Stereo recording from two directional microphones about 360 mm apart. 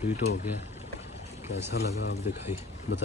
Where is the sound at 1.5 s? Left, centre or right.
Left.